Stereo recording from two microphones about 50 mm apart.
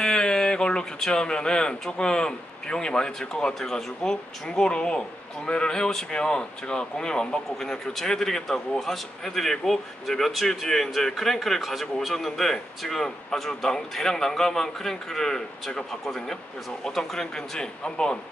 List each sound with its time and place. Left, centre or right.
0.0 s speech: centre